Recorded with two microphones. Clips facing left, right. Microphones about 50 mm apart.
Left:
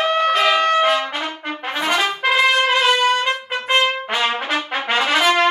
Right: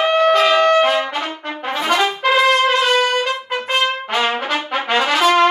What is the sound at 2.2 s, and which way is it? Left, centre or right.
Trumpet, centre.